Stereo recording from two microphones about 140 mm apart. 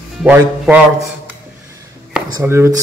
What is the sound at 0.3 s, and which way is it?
Speech, 10° right (ahead or behind).